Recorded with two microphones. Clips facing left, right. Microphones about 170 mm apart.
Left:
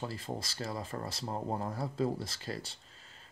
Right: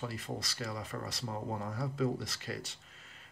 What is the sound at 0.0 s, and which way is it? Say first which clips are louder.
Speech: left 1 dB; 30° left (ahead or behind).